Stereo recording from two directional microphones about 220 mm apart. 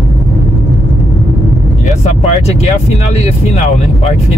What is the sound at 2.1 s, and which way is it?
Vehicle, 30° left (ahead or behind).